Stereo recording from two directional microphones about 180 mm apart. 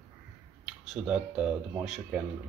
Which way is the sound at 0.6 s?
5° right (ahead or behind).